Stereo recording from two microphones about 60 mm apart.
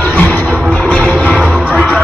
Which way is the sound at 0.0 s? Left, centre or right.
Left.